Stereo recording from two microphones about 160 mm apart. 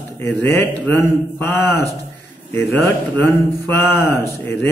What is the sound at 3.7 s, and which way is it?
A man's voice, 15° left (ahead or behind).